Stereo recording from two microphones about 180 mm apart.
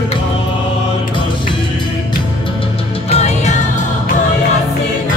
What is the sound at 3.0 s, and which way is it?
Music, 35° left (ahead or behind).